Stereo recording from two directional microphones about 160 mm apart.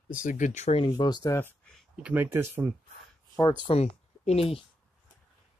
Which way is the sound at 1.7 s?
5° right (ahead or behind).